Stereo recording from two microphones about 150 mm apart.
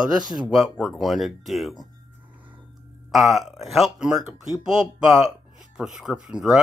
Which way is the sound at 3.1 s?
Centre (ahead or behind).